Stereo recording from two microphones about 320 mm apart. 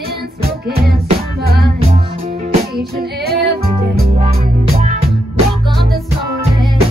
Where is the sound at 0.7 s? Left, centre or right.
Right.